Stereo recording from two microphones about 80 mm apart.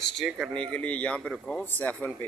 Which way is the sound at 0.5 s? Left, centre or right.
Centre.